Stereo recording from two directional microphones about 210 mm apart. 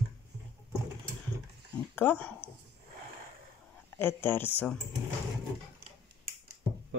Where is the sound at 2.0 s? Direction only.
10° left (ahead or behind).